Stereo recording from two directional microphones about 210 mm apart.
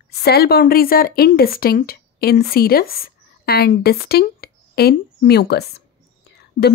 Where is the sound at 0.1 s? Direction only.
50° left (ahead or behind).